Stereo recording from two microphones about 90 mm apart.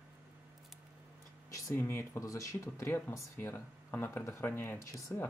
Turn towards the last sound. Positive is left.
turn(degrees=15)  # may be behind; listen again after turning